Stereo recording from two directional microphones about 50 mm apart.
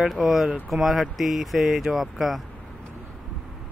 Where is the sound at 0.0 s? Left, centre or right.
Centre.